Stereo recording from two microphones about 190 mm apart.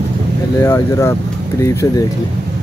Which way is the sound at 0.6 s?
15° left (ahead or behind).